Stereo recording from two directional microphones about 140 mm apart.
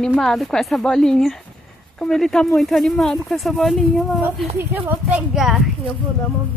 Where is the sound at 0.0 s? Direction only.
5° left (ahead or behind).